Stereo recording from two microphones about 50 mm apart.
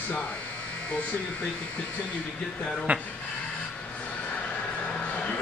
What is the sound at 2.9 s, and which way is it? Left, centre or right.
Speech, right.